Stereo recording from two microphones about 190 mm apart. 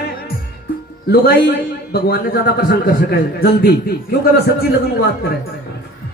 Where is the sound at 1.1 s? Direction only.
55° left (ahead or behind).